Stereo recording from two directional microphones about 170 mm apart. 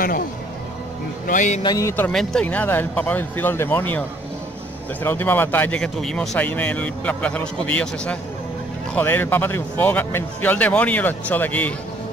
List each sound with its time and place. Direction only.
1.2 s a man's voice: 50° left (ahead or behind)
1.6 s speech: 20° left (ahead or behind)
5.0 s speech: 10° left (ahead or behind)